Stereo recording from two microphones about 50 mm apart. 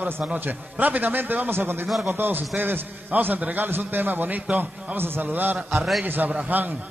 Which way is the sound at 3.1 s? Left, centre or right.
Right.